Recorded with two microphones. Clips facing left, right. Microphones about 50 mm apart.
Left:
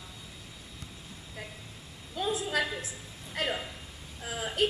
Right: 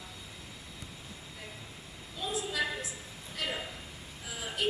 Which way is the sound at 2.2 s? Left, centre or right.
Left.